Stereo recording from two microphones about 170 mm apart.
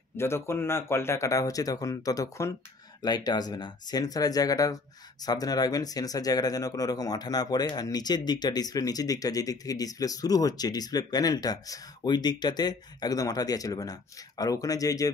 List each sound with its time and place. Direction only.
0.1 s speech: 15° left (ahead or behind)